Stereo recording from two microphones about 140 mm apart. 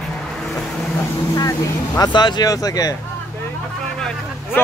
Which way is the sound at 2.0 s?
30° left (ahead or behind).